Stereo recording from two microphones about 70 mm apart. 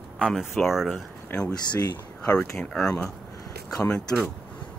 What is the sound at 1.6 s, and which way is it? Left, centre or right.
Speech, left.